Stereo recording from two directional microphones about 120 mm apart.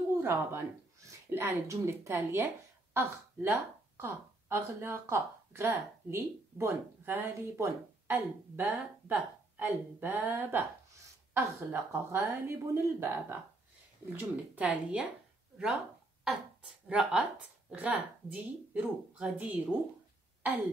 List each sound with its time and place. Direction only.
0.2 s a woman's voice: 20° right (ahead or behind)
16.3 s a woman's voice: 5° right (ahead or behind)